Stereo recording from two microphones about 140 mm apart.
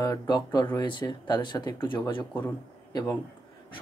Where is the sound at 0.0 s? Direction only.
30° left (ahead or behind).